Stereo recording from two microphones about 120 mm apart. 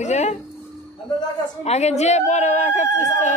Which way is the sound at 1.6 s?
65° left (ahead or behind).